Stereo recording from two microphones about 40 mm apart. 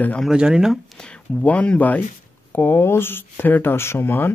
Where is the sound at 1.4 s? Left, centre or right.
Left.